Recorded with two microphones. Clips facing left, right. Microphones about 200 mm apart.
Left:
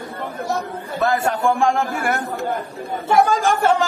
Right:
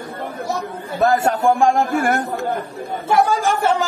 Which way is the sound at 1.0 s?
40° right (ahead or behind).